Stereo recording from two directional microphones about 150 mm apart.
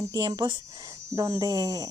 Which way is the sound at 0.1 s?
30° right (ahead or behind).